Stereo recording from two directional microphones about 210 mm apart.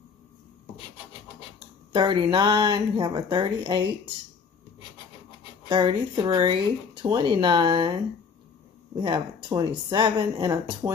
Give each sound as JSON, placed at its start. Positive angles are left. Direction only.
{"t": 1.9, "sound": "speech", "side_deg": -20}
{"t": 5.7, "sound": "speech", "side_deg": -25}
{"t": 9.0, "sound": "speech", "side_deg": -20}